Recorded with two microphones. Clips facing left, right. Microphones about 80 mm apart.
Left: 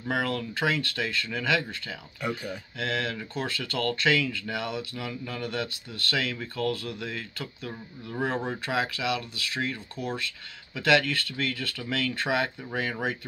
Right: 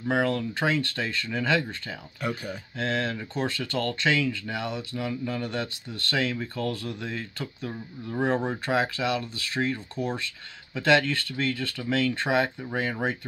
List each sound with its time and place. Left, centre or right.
0.1 s speech: right